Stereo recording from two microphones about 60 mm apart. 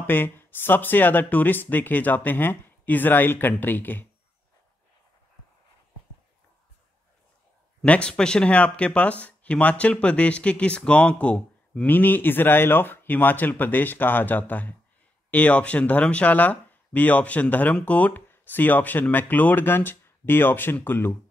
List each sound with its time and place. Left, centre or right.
0.0 s speech: left
7.8 s speech: centre
11.9 s speech: left